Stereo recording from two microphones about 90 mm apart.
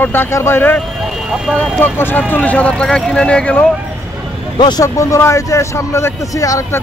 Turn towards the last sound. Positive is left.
turn(degrees=35)  # may be behind; listen again after turning